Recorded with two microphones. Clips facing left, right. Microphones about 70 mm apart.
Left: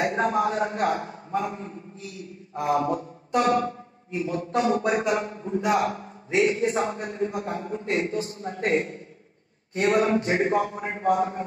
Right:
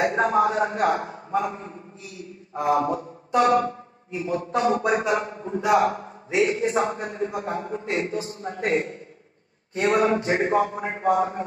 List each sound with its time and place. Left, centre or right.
0.0 s a man's voice: right